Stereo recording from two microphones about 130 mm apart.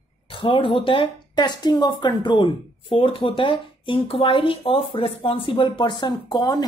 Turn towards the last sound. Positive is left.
turn(degrees=30)  # may be behind; listen again after turning